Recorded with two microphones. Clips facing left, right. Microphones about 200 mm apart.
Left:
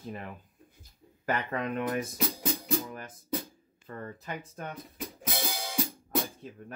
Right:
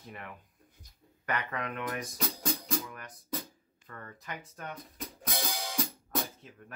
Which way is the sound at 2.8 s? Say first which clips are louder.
Left 5 dB; 30° left (ahead or behind).